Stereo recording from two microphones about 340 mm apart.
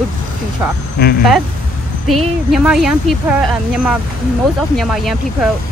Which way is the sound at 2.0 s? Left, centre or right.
Centre.